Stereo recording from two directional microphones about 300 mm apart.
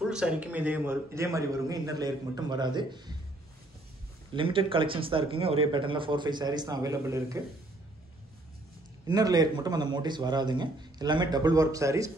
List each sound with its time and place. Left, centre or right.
0.0 s a man's voice: centre
4.3 s a man's voice: centre
9.0 s a man's voice: centre